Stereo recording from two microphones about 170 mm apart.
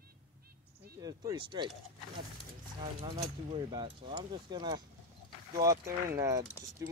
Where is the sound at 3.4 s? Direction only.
30° right (ahead or behind).